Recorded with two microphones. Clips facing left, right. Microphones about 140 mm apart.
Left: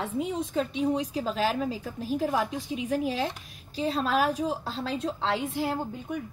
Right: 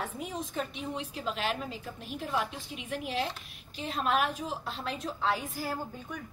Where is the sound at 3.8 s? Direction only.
35° left (ahead or behind).